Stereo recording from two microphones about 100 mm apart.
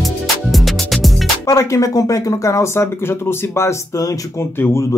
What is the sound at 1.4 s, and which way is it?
Speech, 30° left (ahead or behind).